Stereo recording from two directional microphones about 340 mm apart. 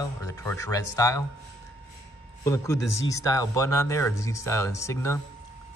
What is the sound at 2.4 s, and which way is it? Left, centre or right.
A man's voice, centre.